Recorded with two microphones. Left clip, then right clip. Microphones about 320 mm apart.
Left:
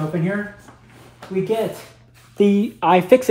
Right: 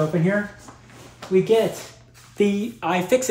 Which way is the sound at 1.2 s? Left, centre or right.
Centre.